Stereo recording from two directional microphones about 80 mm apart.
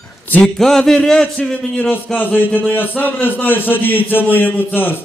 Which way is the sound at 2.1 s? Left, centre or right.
Left.